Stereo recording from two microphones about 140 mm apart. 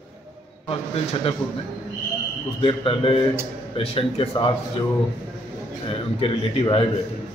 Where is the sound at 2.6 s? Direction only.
40° left (ahead or behind).